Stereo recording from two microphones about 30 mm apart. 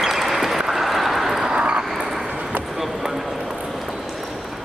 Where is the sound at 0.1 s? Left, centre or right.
Centre.